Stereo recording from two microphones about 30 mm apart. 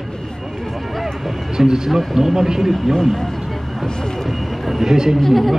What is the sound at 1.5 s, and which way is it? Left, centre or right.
Speech, centre.